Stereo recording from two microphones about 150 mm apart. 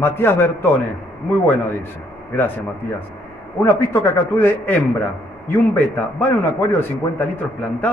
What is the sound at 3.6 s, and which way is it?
A man's voice, 15° left (ahead or behind).